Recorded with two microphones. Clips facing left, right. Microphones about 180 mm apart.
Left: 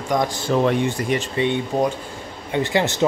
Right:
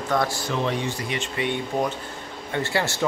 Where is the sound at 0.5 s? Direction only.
50° left (ahead or behind).